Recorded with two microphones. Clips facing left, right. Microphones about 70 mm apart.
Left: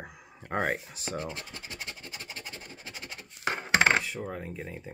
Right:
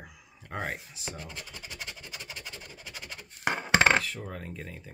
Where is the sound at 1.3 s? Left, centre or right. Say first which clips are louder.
Left 1 dB; left.